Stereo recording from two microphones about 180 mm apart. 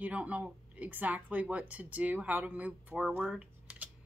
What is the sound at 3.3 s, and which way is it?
Typing, 5° right (ahead or behind).